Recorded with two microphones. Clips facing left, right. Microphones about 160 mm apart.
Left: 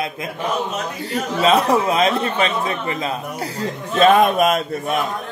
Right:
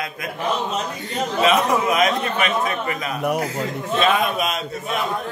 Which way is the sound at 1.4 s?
30° left (ahead or behind).